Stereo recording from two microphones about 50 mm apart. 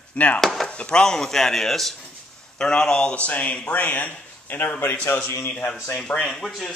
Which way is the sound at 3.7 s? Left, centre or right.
Left.